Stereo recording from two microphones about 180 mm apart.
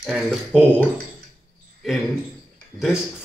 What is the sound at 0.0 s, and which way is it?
Speech, centre (ahead or behind).